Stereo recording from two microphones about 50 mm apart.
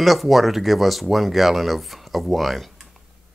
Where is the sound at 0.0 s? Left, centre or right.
Centre.